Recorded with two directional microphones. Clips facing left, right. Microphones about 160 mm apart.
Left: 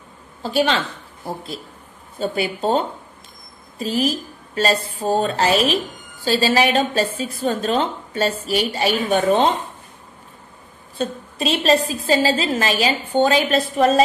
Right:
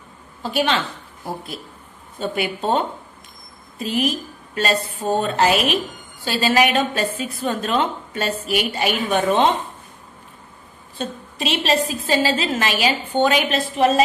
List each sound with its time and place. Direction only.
0.4 s a woman's voice: 35° left (ahead or behind)
2.1 s a woman's voice: 30° left (ahead or behind)
3.8 s a woman's voice: 35° left (ahead or behind)
11.0 s a woman's voice: 35° left (ahead or behind)